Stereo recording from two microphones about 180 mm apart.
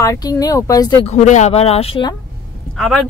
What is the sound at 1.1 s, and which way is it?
Speech, 40° left (ahead or behind).